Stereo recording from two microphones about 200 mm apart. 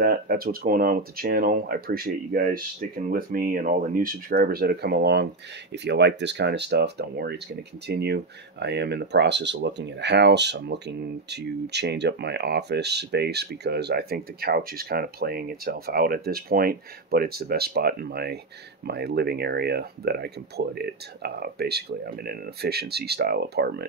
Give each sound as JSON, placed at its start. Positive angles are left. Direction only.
{"t": 0.0, "sound": "speech", "side_deg": -45}